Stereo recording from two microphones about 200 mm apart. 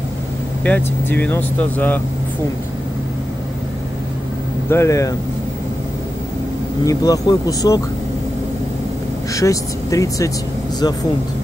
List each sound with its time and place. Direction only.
0.7 s speech: 10° left (ahead or behind)
4.6 s speech: 15° left (ahead or behind)
6.9 s speech: 15° left (ahead or behind)
9.3 s speech: 15° left (ahead or behind)